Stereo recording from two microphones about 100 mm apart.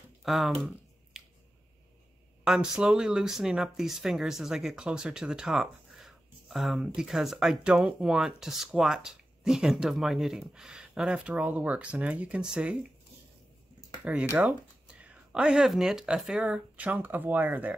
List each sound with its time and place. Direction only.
0.2 s a sound: centre (ahead or behind)
2.4 s speech: 5° right (ahead or behind)
14.1 s speech: 15° right (ahead or behind)